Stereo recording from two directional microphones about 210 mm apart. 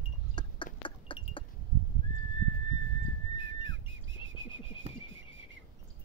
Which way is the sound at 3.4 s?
65° right (ahead or behind).